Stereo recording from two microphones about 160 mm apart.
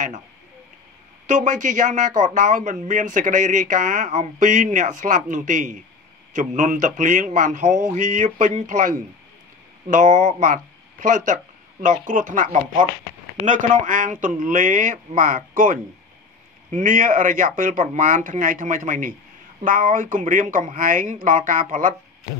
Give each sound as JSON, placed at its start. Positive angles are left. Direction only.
{"t": 1.2, "sound": "a man's voice", "side_deg": -50}